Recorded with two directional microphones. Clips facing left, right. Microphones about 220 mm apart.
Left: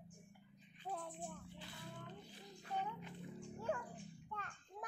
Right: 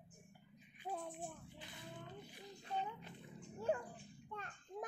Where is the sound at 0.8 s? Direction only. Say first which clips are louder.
Right 1 dB; 10° right (ahead or behind).